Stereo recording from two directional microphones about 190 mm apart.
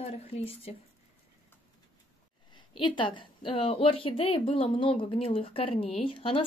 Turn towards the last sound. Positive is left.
turn(degrees=25)  # may be behind; listen again after turning